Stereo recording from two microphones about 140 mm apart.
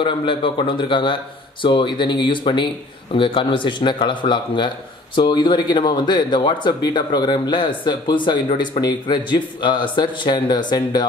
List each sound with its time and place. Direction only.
0.0 s speech: 35° left (ahead or behind)